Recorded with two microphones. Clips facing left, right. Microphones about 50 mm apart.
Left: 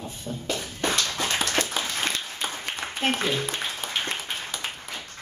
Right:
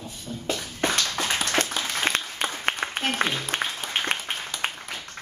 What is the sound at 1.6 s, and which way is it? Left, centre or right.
Applause, right.